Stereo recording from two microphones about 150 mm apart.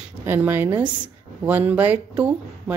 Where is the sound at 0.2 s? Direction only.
15° right (ahead or behind).